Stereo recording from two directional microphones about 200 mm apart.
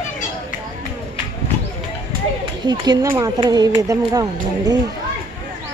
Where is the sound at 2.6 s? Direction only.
15° right (ahead or behind).